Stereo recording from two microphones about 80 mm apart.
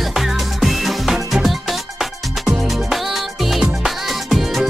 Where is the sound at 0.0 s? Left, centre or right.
Centre.